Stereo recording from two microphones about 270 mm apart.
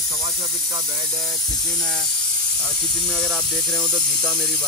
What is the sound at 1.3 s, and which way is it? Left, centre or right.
Speech, centre.